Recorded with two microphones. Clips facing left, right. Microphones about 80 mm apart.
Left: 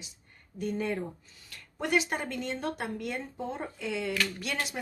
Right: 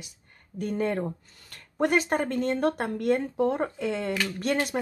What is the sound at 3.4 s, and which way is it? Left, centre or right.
Speech, right.